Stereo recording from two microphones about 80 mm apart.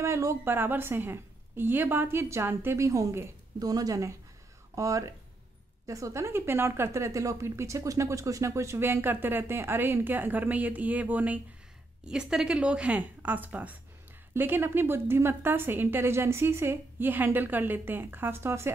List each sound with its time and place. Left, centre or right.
0.0 s speech: right
0.5 s a woman's voice: right
12.0 s a woman's voice: centre; by 18.7 s right